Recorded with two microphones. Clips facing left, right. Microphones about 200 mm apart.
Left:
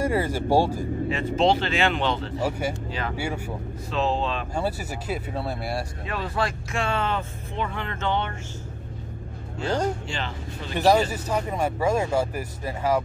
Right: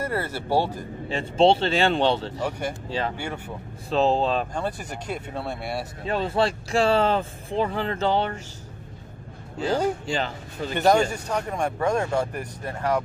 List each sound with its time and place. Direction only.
0.0 s speech: 10° left (ahead or behind)
1.0 s speech: 30° right (ahead or behind)
3.2 s speech: 10° left (ahead or behind)
3.9 s speech: 35° right (ahead or behind)
4.6 s speech: 5° left (ahead or behind)
6.0 s speech: 30° right (ahead or behind)
10.0 s speech: 40° right (ahead or behind)
10.7 s speech: centre (ahead or behind)